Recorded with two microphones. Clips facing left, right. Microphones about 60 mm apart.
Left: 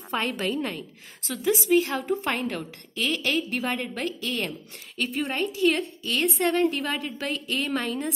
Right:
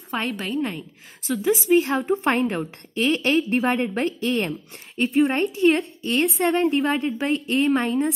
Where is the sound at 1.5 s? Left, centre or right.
Right.